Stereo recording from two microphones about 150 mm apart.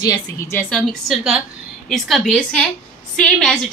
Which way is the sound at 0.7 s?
Centre (ahead or behind).